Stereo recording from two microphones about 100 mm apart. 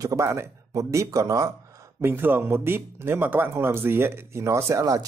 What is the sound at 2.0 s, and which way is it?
Speech, 20° right (ahead or behind).